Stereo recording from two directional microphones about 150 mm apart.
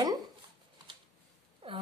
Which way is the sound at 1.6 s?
40° right (ahead or behind).